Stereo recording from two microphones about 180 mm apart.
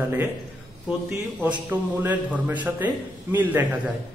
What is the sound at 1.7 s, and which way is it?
A man's voice, 10° right (ahead or behind).